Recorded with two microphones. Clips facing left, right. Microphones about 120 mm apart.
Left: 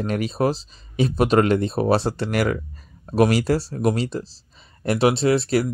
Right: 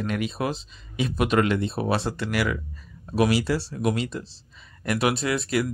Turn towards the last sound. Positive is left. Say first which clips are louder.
# left 6 dB
turn(degrees=35)  # may be behind; listen again after turning